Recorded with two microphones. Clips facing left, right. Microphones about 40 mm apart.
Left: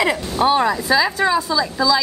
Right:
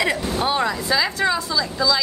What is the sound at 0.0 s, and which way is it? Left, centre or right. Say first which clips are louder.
A woman's voice: left 4 dB; centre.